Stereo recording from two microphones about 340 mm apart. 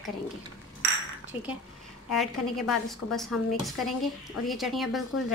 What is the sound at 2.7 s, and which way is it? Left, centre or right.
A woman's voice, centre.